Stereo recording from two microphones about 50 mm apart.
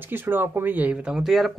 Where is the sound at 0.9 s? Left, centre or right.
Centre.